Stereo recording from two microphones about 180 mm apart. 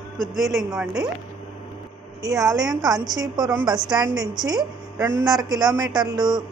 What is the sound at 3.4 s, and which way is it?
Speech, 20° right (ahead or behind).